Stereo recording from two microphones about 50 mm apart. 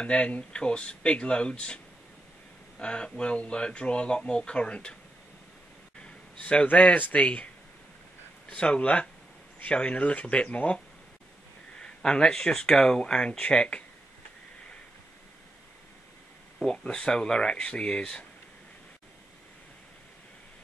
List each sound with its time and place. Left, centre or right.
0.0 s speech: left
2.8 s speech: left
5.9 s speech: left
8.5 s speech: centre
11.8 s speech: centre
16.5 s speech: centre